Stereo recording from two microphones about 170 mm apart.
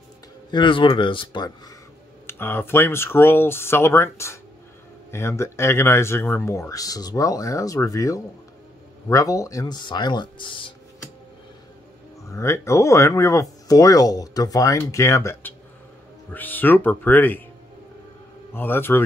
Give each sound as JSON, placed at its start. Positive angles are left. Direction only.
{"t": 0.5, "sound": "speech", "side_deg": 30}
{"t": 2.2, "sound": "speech", "side_deg": 15}
{"t": 12.3, "sound": "speech", "side_deg": 15}
{"t": 18.5, "sound": "speech", "side_deg": 15}